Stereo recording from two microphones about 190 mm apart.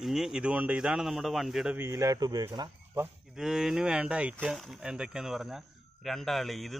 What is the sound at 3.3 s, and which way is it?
Speech, centre (ahead or behind).